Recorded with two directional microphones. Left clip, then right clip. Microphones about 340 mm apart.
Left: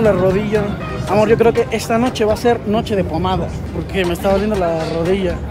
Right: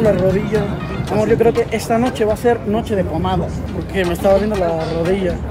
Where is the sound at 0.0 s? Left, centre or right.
Centre.